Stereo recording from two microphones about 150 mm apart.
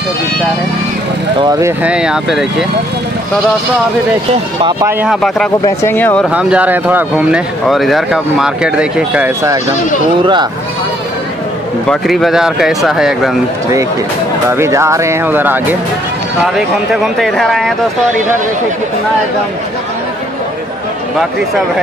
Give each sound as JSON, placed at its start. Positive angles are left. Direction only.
{"t": 1.4, "sound": "speech", "side_deg": -25}
{"t": 1.8, "sound": "speech", "side_deg": -5}
{"t": 5.0, "sound": "speech", "side_deg": 0}
{"t": 5.8, "sound": "speech", "side_deg": 15}
{"t": 6.2, "sound": "speech", "side_deg": -10}
{"t": 11.9, "sound": "speech", "side_deg": 0}
{"t": 14.5, "sound": "speech", "side_deg": -20}
{"t": 16.5, "sound": "speech", "side_deg": 0}